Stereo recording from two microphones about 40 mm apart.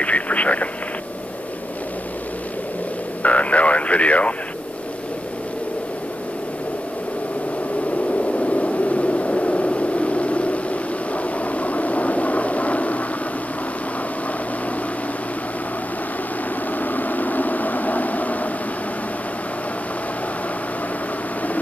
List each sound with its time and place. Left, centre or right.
0.0 s radio: left
3.2 s radio: left
8.1 s vehicle: left
16.7 s vehicle: left